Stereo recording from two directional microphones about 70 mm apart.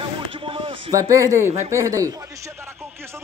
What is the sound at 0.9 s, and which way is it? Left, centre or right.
Speech, right.